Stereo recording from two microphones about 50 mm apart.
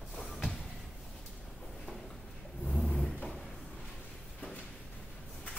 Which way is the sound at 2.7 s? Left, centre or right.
Centre.